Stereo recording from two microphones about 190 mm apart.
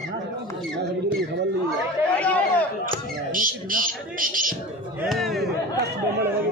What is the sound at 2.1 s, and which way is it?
Speech, 5° left (ahead or behind).